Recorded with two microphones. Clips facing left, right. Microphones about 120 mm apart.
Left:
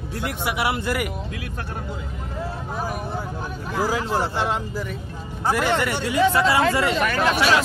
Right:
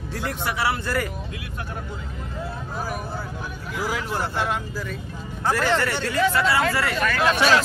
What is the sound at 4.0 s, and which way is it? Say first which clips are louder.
Speech: left 3 dB; 25° left (ahead or behind).